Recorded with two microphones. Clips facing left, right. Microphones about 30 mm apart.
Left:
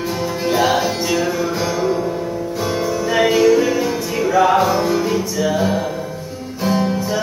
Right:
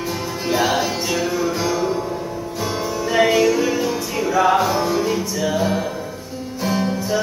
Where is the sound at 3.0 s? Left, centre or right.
Centre.